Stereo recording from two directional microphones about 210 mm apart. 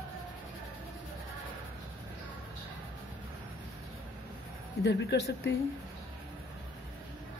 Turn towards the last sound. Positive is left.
turn(degrees=50)  # may be behind; listen again after turning